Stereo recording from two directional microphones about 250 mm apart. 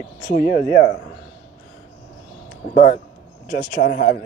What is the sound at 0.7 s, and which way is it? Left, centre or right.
Speech, right.